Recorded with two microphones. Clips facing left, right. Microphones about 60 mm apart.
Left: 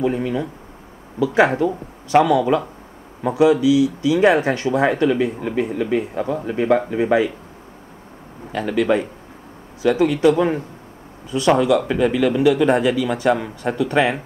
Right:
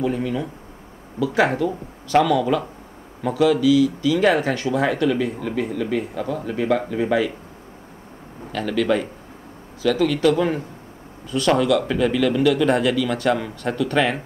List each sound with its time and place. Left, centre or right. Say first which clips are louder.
0.0 s speech: left 2 dB; left
8.5 s a man's voice: left 2 dB; left